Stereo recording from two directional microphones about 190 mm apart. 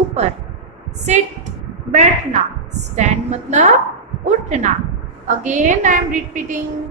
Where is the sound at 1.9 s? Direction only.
40° right (ahead or behind).